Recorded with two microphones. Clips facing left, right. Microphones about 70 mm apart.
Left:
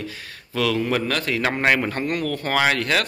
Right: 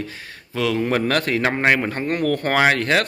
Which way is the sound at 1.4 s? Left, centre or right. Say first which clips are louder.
Left 1 dB; right.